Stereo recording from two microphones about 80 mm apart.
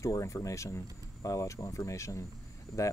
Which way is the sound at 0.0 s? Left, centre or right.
Left.